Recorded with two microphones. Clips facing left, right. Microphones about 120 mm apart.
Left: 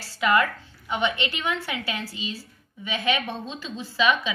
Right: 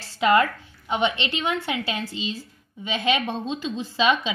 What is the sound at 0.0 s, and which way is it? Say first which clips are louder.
A woman's voice: right 3 dB; 25° right (ahead or behind).